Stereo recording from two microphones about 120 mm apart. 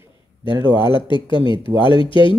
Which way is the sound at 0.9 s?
40° left (ahead or behind).